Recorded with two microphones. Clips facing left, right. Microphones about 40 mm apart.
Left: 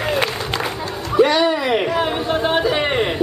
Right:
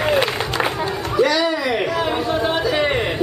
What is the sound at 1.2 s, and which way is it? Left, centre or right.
Music, left.